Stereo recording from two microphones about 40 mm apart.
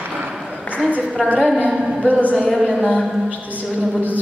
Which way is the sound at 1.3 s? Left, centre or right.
Centre.